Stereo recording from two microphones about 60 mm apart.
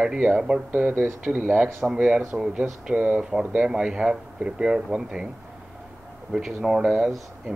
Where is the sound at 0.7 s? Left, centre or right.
Right.